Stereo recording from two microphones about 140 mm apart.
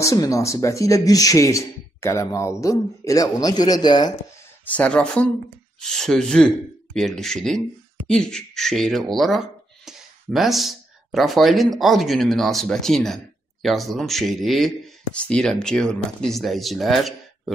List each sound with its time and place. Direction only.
0.0 s speech: 25° left (ahead or behind)
4.6 s speech: 10° left (ahead or behind)